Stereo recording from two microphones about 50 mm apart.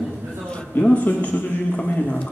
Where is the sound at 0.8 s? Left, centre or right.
Left.